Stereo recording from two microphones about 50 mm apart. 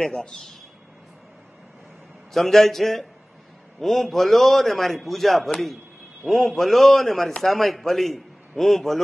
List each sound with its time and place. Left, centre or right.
0.0 s a man's voice: centre
2.3 s a man's voice: centre